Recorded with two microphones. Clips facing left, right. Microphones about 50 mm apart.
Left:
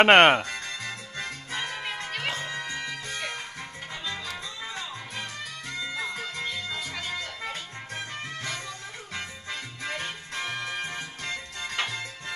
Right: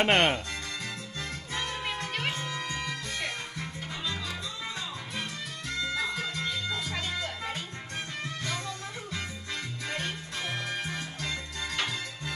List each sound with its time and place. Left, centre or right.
0.0 s speech: left
0.5 s music: left
1.7 s music: centre
2.2 s music: left
2.5 s music: left
5.8 s music: left
9.1 s music: left